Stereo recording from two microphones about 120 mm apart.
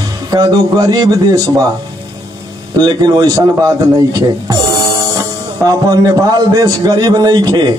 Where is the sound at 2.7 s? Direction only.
35° right (ahead or behind).